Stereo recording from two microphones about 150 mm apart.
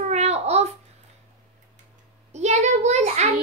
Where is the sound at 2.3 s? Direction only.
50° right (ahead or behind).